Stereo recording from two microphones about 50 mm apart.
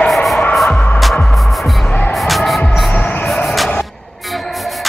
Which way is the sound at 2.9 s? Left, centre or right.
Left.